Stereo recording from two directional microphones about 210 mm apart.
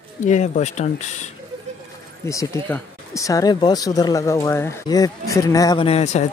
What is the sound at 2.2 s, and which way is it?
Speech, 15° left (ahead or behind).